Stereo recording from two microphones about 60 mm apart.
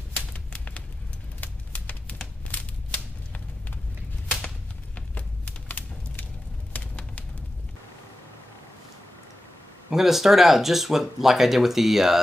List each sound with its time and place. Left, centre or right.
0.1 s typewriter: left
1.4 s a sound: left
5.7 s typewriter: left
9.8 s speech: centre